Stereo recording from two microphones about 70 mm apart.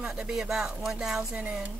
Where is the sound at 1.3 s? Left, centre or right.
Centre.